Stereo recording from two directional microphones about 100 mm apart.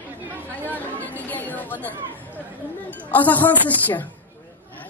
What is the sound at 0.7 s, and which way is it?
Chatter, 15° left (ahead or behind).